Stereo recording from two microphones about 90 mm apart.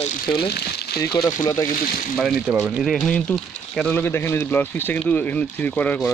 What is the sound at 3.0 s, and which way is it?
Speech, 10° left (ahead or behind).